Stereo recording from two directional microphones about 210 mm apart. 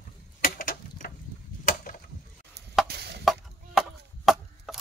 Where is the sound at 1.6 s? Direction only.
40° left (ahead or behind).